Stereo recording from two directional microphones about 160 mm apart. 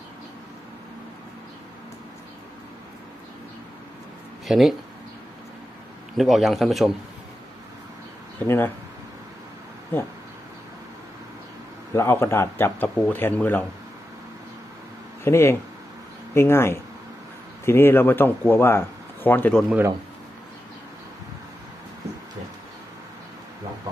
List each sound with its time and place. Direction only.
4.5 s a man's voice: centre (ahead or behind)
6.1 s a man's voice: centre (ahead or behind)
8.4 s speech: 10° left (ahead or behind)
11.9 s speech: 15° left (ahead or behind)
15.2 s speech: 15° left (ahead or behind)